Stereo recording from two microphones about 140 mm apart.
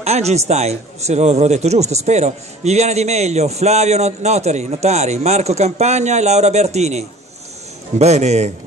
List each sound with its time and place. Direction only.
0.0 s speech: 50° right (ahead or behind)